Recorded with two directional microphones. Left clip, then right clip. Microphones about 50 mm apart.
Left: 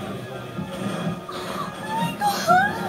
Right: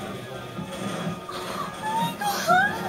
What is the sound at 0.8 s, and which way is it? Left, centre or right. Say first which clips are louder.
Music: left 2 dB; centre.